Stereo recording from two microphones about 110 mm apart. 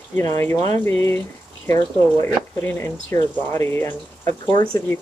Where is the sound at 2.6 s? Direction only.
20° left (ahead or behind).